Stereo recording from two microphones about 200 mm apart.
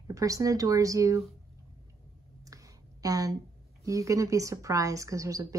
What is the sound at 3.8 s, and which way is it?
A woman's voice, 15° right (ahead or behind).